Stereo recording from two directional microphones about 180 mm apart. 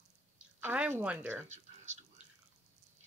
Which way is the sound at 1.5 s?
40° right (ahead or behind).